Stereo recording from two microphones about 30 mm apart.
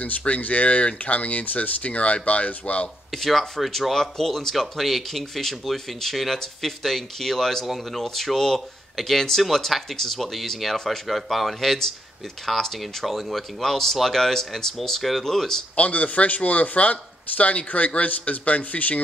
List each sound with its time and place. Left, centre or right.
0.3 s a man's voice: left
1.8 s speech: left
3.1 s speech: centre
7.6 s speech: centre
8.0 s speech: centre
13.6 s speech: centre
15.0 s speech: centre
15.2 s speech: centre
15.7 s a man's voice: left